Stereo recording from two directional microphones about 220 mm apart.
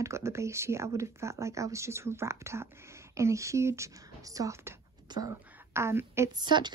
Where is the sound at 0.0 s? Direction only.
10° right (ahead or behind).